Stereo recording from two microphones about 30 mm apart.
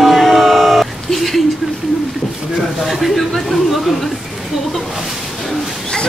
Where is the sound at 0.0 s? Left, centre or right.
Centre.